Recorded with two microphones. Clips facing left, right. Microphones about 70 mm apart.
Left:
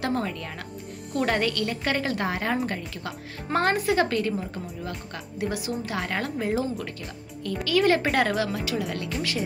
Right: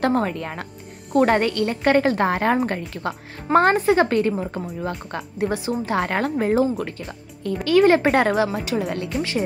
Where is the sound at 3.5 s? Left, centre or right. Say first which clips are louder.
Right 7 dB; right.